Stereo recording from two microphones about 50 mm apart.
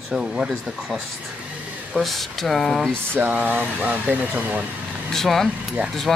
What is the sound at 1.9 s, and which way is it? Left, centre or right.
Speech, centre.